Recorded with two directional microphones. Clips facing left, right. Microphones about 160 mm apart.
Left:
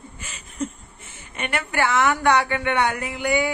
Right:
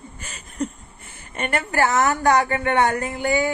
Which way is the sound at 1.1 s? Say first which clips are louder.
Right 3 dB; 40° right (ahead or behind).